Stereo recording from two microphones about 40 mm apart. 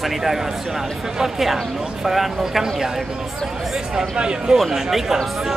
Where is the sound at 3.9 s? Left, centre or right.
Right.